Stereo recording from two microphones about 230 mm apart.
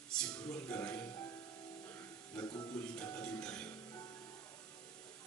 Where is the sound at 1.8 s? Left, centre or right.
Centre.